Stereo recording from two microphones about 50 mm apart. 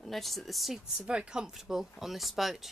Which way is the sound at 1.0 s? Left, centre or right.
Centre.